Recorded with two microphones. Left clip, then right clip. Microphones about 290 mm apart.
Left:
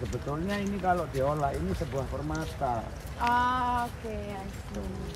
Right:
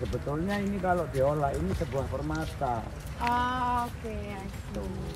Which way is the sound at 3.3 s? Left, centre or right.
Centre.